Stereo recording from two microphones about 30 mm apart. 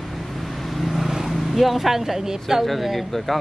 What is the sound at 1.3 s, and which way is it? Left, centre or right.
Speech, centre.